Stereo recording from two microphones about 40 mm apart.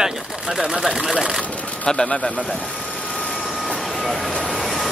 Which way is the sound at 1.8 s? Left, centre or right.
Centre.